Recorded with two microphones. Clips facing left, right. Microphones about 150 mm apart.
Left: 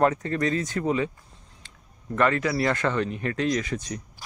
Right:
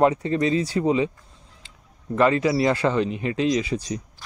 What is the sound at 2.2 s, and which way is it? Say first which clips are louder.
Speech: right 4 dB; 25° right (ahead or behind).